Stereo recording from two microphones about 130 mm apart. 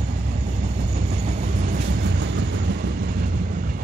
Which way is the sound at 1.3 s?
80° right.